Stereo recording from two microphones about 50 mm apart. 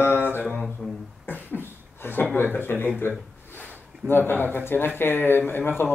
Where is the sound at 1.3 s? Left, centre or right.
Left.